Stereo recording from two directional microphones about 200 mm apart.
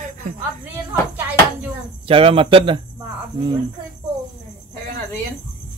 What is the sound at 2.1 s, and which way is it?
Speech, 25° right (ahead or behind).